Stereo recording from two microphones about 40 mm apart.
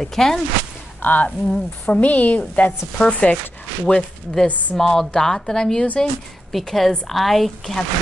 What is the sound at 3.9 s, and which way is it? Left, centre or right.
Speech, left.